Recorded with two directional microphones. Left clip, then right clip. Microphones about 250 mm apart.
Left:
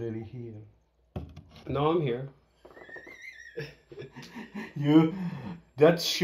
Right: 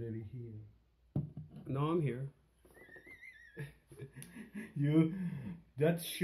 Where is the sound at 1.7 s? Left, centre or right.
Right.